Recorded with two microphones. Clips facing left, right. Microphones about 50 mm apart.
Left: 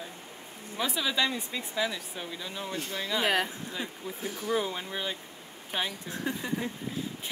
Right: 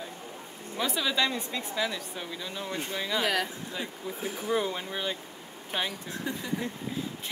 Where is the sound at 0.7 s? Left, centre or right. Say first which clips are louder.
Right 1 dB; centre.